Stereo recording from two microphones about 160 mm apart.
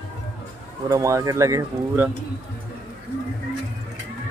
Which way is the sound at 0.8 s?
20° right (ahead or behind).